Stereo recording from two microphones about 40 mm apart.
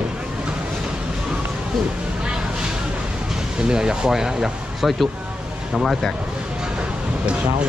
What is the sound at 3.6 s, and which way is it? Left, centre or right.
Speech, centre.